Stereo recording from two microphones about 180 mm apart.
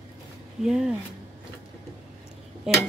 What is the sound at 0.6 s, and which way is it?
Speech, 5° right (ahead or behind).